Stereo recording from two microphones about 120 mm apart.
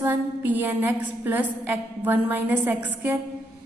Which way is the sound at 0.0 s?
15° right (ahead or behind).